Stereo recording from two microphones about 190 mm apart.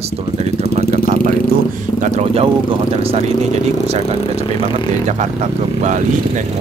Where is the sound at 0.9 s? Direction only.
45° right (ahead or behind).